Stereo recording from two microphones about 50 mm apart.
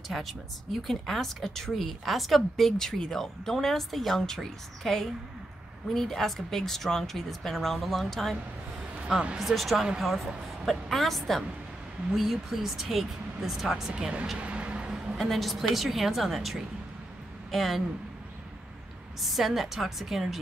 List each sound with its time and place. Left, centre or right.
0.1 s speech: centre
9.4 s speech: centre
14.4 s vehicle: right
14.9 s a sound: centre
15.1 s speech: centre
19.2 s speech: centre